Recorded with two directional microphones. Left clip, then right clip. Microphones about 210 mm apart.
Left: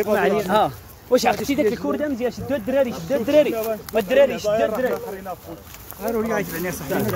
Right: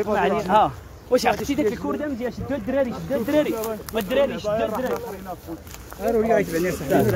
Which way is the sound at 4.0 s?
25° left (ahead or behind).